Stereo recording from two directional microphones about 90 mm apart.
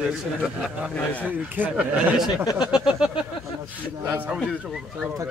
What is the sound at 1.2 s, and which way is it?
Speech, 20° right (ahead or behind).